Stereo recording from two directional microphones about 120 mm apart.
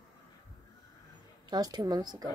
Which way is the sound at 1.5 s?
35° right (ahead or behind).